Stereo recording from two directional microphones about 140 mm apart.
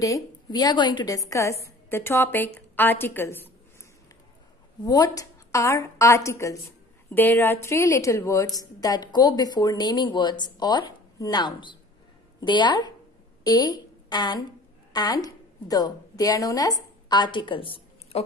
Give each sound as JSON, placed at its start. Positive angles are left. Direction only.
{"t": 0.0, "sound": "a woman's voice", "side_deg": 25}
{"t": 4.8, "sound": "a woman's voice", "side_deg": 25}